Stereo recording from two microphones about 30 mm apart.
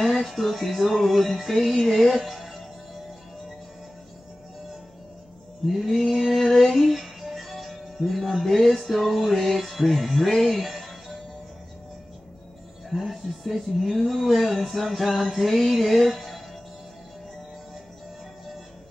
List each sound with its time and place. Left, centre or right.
0.0 s a sound: centre
2.0 s speech: centre
5.7 s female singing: centre
7.2 s music: centre
7.4 s music: centre
12.9 s a sound: centre